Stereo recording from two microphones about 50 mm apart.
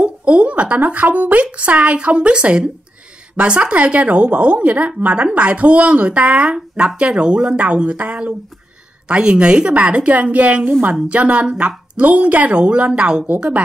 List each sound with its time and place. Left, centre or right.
0.0 s a woman's voice: right